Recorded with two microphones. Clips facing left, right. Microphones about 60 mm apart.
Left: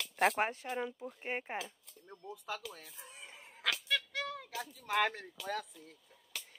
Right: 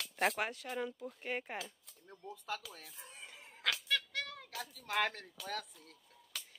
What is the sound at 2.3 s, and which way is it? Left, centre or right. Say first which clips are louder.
Speech: left 1 dB; centre.